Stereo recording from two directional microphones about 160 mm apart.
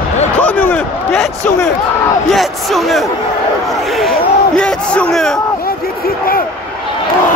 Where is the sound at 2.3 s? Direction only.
Centre (ahead or behind).